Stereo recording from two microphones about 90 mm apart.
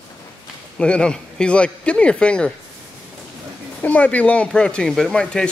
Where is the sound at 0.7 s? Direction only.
10° left (ahead or behind).